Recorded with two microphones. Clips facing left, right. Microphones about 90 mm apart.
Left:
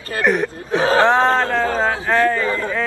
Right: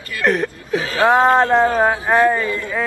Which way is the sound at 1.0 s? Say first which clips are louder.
Right 2 dB; 15° right (ahead or behind).